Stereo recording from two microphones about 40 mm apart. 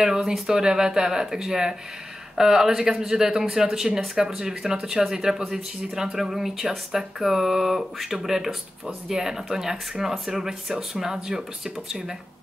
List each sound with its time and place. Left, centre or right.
0.0 s speech: centre